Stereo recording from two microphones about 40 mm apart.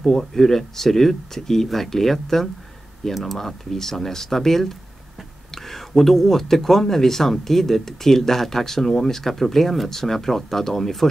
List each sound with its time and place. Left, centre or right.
0.2 s speech: centre